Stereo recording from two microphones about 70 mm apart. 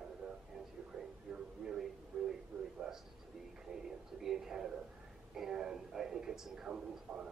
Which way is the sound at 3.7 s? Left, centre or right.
Centre.